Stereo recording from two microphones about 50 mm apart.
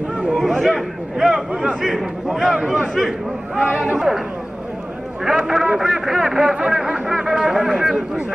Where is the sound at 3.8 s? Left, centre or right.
Centre.